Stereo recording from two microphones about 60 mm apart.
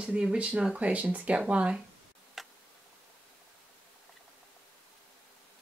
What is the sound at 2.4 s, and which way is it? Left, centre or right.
Tick-tock, centre.